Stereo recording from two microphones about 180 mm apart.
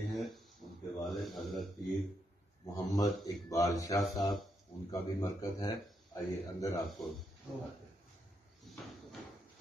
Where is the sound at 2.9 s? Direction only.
20° left (ahead or behind).